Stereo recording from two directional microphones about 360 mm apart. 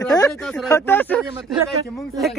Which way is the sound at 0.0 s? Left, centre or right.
Centre.